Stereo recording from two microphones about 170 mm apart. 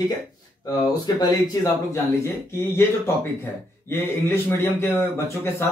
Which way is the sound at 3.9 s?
15° left (ahead or behind).